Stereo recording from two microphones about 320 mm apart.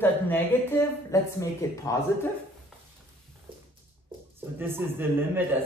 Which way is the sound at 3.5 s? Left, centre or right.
Centre.